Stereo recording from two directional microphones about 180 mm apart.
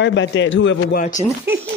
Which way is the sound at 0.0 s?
85° left.